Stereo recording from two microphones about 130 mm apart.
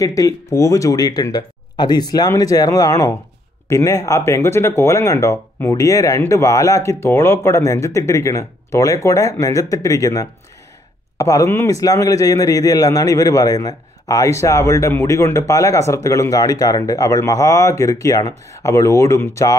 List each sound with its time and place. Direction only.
0.0 s a man's voice: 25° left (ahead or behind)